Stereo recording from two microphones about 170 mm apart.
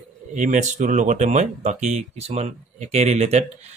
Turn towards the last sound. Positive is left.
turn(degrees=-40)  # may be behind; listen again after turning